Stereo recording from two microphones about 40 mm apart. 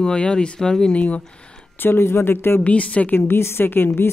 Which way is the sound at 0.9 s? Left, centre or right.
Left.